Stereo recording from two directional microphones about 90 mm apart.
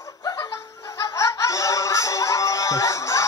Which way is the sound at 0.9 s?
40° left (ahead or behind).